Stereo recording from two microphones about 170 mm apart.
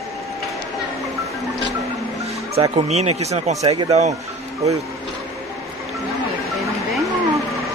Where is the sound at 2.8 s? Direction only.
40° right (ahead or behind).